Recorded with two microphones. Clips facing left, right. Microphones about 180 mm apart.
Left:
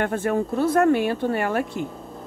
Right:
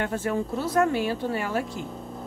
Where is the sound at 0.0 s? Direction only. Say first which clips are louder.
Left 4 dB; 55° left (ahead or behind).